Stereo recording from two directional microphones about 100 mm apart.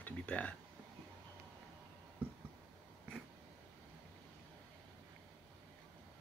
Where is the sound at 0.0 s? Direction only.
10° left (ahead or behind).